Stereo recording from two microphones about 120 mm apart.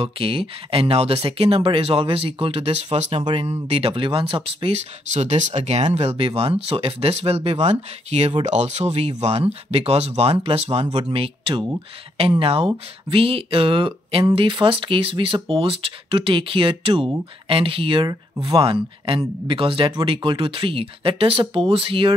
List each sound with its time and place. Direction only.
0.0 s speech: 50° right (ahead or behind)
5.1 s speech: 65° right (ahead or behind)
11.1 s speech: 45° right (ahead or behind)
18.0 s speech: 35° right (ahead or behind)
18.6 s speech: 50° right (ahead or behind)